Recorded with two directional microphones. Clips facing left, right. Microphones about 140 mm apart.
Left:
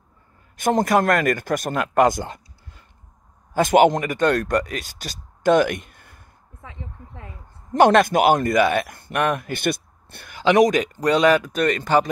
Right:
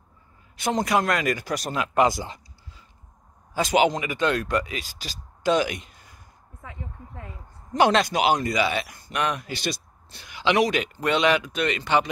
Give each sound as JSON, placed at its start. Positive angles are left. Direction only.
{"t": 0.6, "sound": "speech", "side_deg": 50}
{"t": 7.7, "sound": "speech", "side_deg": 50}